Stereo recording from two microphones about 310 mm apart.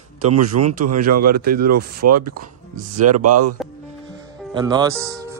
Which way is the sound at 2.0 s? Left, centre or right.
Right.